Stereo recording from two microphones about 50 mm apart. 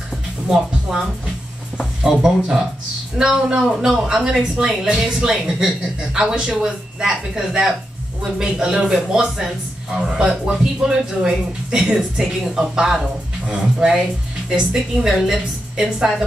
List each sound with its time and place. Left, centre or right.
0.5 s speech: centre
4.1 s speech: centre
12.3 s speech: centre